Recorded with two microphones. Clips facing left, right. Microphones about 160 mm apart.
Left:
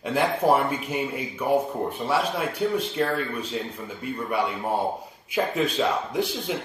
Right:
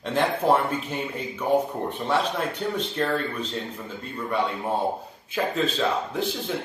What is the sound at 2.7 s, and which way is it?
Speech, 10° left (ahead or behind).